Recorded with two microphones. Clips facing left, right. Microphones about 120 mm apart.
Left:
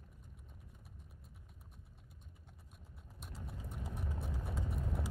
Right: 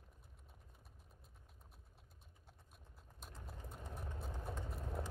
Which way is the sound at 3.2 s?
5° left (ahead or behind).